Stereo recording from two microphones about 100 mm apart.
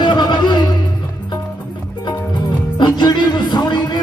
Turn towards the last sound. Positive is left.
turn(degrees=45)  # may be behind; listen again after turning